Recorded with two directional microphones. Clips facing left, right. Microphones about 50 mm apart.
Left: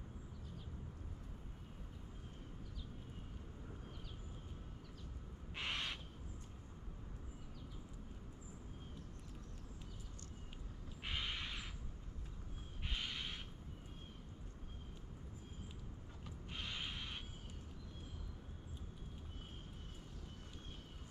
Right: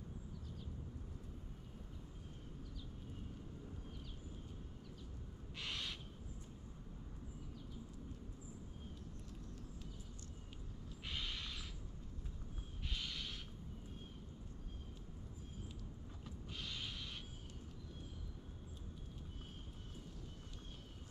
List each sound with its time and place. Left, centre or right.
5.6 s owl: left
11.1 s creak: left
12.8 s owl: left
16.5 s a sound: left